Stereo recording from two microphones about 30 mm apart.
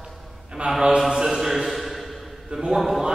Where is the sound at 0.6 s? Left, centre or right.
Right.